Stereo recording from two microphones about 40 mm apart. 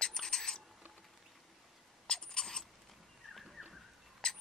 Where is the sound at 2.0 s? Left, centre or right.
Centre.